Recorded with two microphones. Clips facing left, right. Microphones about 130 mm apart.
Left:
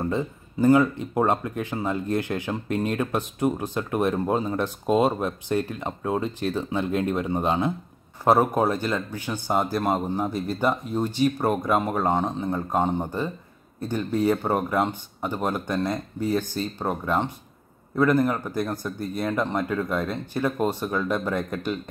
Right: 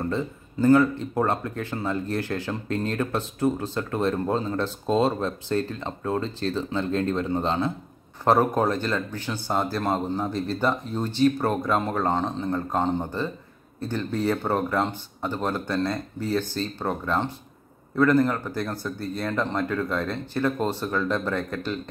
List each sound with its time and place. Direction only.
0.0 s speech: 15° left (ahead or behind)